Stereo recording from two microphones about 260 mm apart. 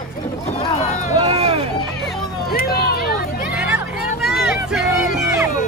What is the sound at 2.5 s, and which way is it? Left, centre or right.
Hubbub, left.